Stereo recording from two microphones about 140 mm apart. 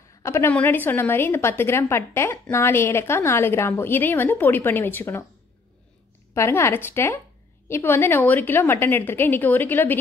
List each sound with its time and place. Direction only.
0.2 s a woman's voice: 20° left (ahead or behind)
6.3 s a woman's voice: 20° left (ahead or behind)